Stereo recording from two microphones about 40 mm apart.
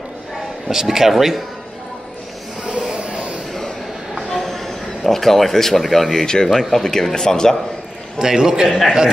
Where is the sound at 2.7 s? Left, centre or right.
Right.